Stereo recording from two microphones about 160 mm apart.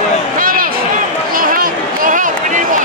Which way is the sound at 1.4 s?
60° right (ahead or behind).